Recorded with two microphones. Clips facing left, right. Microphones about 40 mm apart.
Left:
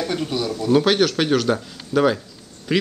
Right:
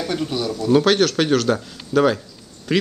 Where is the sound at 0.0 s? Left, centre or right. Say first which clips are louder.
Even; centre.